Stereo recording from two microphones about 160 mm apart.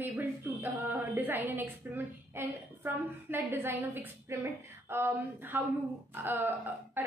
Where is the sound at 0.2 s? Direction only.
10° right (ahead or behind).